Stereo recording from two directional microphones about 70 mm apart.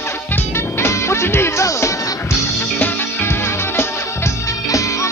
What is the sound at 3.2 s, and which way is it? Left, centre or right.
Music, left.